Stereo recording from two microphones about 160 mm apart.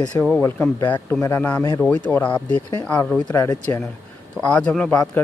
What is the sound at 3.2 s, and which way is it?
Speech, 25° left (ahead or behind).